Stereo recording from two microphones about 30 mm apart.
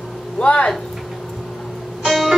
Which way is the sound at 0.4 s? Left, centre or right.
Left.